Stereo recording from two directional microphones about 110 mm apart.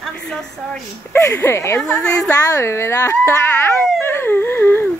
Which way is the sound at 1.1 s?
25° left (ahead or behind).